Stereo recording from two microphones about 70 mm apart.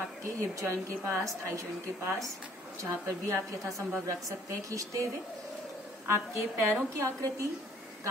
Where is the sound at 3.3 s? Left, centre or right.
Right.